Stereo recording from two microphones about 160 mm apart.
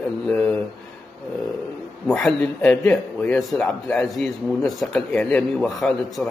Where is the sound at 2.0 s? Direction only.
5° left (ahead or behind).